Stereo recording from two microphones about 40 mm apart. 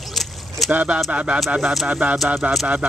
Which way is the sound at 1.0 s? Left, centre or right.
Right.